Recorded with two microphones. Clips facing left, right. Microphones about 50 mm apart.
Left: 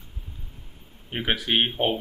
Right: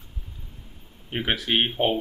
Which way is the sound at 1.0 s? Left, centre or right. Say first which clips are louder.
Even; centre.